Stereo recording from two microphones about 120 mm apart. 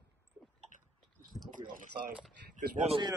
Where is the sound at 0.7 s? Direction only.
90° right.